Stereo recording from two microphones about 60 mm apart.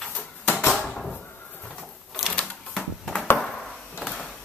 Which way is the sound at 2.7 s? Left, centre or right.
Centre.